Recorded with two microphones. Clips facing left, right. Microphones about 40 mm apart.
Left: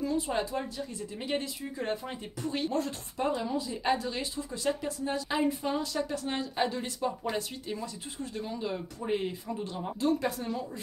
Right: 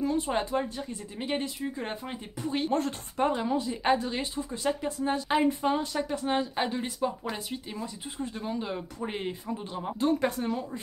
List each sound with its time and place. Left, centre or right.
0.0 s speech: right
1.1 s a woman's voice: centre
2.7 s a woman's voice: right
9.9 s speech: right